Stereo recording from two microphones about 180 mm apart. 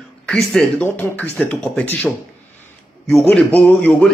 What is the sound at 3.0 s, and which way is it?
A man's voice, centre (ahead or behind).